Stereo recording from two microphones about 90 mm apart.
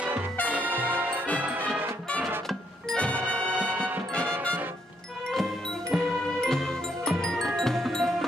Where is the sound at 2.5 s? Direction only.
10° left (ahead or behind).